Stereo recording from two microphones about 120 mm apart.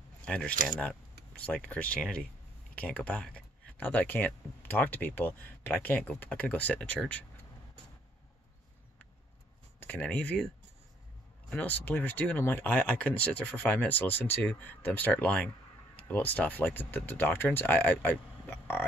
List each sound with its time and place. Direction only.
0.2 s speech: 10° left (ahead or behind)
9.8 s speech: 15° left (ahead or behind)
11.5 s speech: 15° left (ahead or behind)